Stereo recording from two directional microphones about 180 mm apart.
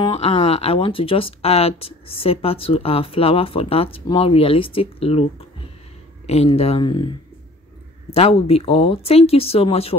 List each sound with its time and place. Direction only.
0.0 s speech: 30° left (ahead or behind)
6.2 s speech: 35° left (ahead or behind)
8.1 s speech: 30° left (ahead or behind)